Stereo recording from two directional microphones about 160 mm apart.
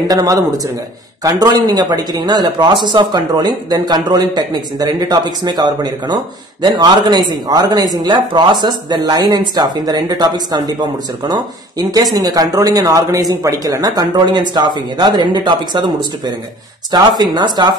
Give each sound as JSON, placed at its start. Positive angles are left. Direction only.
{"t": 0.1, "sound": "speech", "side_deg": -25}
{"t": 11.9, "sound": "speech", "side_deg": -25}